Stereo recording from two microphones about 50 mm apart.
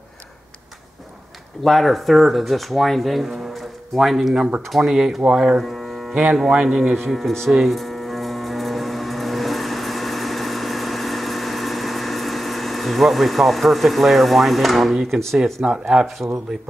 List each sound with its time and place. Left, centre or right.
1.6 s speech: centre
5.6 s music: centre
6.5 s speech: centre
7.1 s speech: centre
7.6 s a sound: centre
15.6 s speech: centre